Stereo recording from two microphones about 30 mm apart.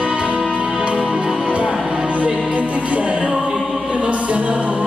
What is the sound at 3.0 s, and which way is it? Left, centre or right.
Music, right.